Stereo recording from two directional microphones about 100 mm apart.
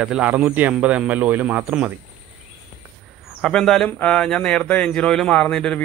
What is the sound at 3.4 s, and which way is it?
Speech, 5° left (ahead or behind).